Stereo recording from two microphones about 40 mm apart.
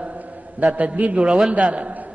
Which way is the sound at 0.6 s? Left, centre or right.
Right.